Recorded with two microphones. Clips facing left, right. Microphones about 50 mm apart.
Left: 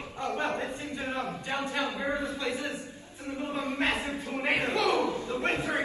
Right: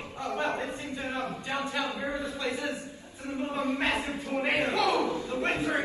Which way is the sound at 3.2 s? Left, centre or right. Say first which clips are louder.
Right 1 dB; right.